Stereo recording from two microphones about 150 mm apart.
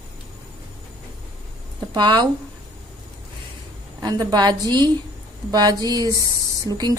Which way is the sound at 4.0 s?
30° right (ahead or behind).